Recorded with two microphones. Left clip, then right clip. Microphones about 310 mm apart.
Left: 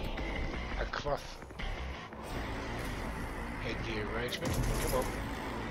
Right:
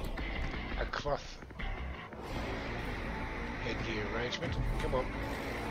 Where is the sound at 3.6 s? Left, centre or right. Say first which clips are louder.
Even; centre.